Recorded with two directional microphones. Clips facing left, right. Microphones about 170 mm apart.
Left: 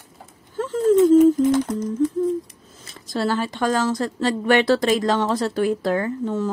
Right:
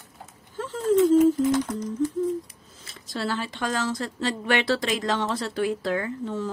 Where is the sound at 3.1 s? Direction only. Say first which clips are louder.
Left 6 dB; 45° left (ahead or behind).